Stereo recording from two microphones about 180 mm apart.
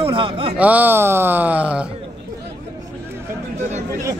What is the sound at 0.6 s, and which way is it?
Speech, 10° right (ahead or behind).